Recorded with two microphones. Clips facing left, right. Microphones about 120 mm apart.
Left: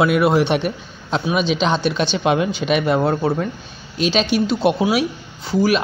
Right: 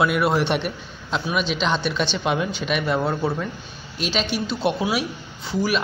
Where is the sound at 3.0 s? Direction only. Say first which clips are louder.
Left 5 dB; 25° left (ahead or behind).